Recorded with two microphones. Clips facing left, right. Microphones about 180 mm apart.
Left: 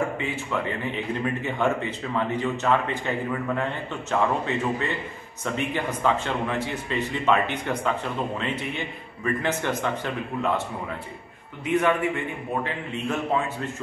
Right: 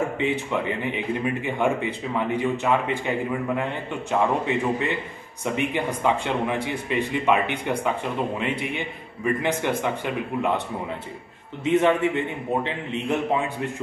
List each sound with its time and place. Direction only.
0.2 s a man's voice: 15° right (ahead or behind)
11.6 s a man's voice: 25° right (ahead or behind)